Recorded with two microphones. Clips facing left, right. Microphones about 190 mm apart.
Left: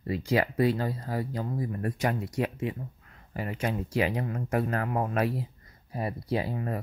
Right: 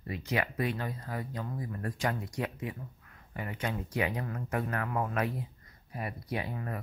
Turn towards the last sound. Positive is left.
turn(degrees=25)  # may be behind; listen again after turning